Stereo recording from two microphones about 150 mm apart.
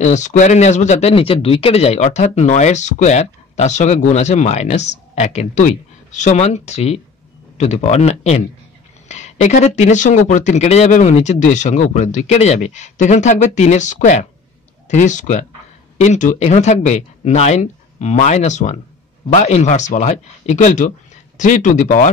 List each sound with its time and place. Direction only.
0.0 s speech: 55° left (ahead or behind)